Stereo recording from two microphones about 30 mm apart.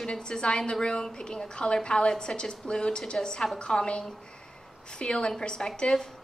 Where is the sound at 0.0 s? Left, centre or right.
Left.